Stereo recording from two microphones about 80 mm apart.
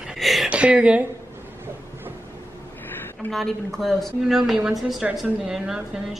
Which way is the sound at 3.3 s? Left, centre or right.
Centre.